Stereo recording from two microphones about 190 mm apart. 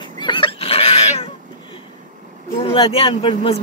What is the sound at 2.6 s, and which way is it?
Speech, 30° left (ahead or behind).